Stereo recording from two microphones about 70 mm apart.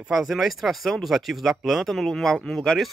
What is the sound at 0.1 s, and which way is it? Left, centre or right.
A man's voice, centre.